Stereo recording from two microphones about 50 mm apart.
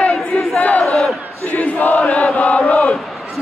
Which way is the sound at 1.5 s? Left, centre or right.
Left.